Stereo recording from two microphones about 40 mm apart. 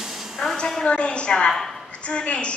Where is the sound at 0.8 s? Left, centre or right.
Left.